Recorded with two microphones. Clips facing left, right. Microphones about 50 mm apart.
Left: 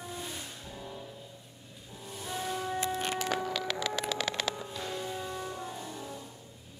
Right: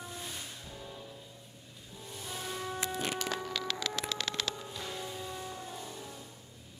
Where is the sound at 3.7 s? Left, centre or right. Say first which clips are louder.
Left 3 dB; centre.